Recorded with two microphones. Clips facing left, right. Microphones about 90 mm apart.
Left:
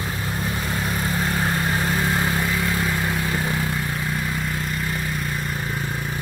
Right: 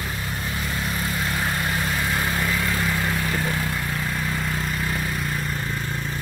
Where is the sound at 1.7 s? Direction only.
25° left (ahead or behind).